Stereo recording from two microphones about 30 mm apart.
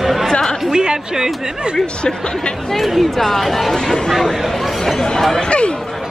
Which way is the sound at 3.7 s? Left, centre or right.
Left.